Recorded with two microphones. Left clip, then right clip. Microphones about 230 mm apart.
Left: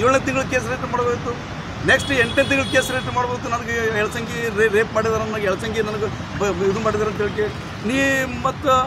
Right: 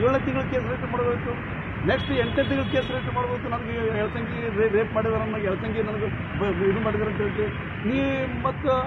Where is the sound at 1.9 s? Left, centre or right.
Left.